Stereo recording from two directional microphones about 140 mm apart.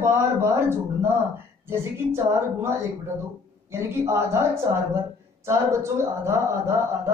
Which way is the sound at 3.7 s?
20° right (ahead or behind).